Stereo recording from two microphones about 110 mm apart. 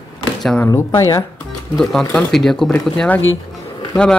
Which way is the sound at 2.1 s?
5° left (ahead or behind).